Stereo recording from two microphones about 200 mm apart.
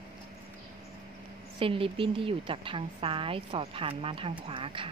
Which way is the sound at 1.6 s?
25° right (ahead or behind).